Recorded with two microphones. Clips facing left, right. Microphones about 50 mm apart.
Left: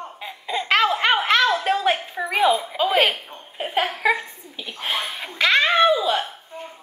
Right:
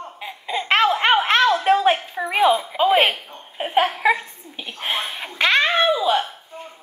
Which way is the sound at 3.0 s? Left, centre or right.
Centre.